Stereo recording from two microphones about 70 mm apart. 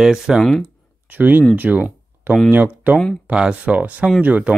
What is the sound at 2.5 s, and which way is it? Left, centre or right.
Speech, right.